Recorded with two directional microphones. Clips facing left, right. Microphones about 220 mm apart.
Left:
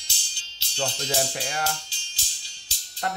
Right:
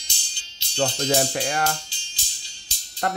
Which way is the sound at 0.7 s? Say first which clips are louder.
Right 6 dB; 55° right (ahead or behind).